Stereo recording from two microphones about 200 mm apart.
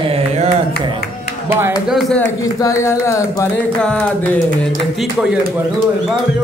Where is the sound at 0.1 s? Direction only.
30° right (ahead or behind).